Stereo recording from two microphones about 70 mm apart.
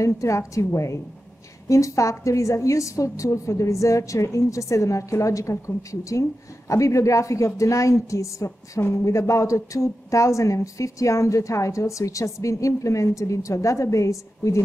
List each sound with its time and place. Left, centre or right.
0.0 s speech: left